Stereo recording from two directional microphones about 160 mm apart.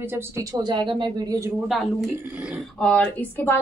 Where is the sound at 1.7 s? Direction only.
Centre (ahead or behind).